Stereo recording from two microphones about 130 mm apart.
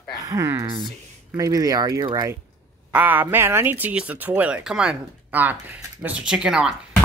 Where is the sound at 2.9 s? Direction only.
15° right (ahead or behind).